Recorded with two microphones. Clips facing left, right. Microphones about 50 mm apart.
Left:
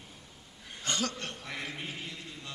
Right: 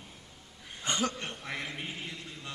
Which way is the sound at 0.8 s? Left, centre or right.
Centre.